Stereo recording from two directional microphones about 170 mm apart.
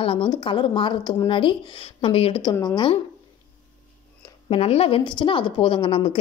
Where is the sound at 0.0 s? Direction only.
30° left (ahead or behind).